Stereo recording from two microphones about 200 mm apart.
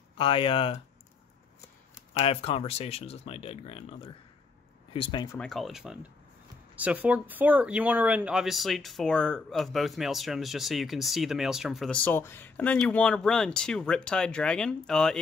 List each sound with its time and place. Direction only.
0.2 s speech: 25° left (ahead or behind)
2.1 s speech: 30° left (ahead or behind)
5.4 s speech: centre (ahead or behind)